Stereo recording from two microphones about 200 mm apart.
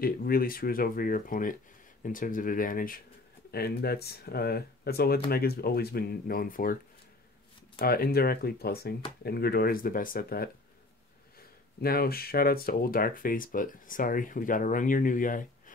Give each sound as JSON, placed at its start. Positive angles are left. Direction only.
{"t": 0.0, "sound": "speech", "side_deg": 45}
{"t": 7.8, "sound": "speech", "side_deg": 50}
{"t": 11.8, "sound": "speech", "side_deg": 50}